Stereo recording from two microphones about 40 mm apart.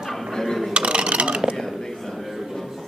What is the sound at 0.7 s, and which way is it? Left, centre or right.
Mechanisms, right.